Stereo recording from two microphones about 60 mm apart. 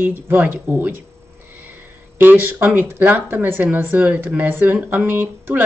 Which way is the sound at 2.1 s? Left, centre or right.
Right.